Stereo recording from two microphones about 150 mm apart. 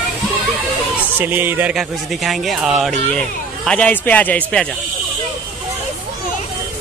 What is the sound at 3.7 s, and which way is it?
A man's voice, 10° left (ahead or behind).